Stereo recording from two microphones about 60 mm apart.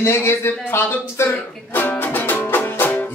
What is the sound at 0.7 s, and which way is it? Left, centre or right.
Speech, left.